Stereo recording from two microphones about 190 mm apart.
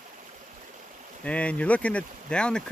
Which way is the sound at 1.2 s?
5° left (ahead or behind).